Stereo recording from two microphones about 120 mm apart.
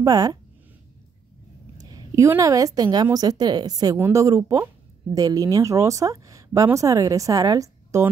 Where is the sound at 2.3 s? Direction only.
30° right (ahead or behind).